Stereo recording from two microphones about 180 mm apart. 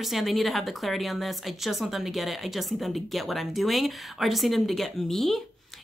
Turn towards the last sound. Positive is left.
turn(degrees=0)  # may be behind; listen again after turning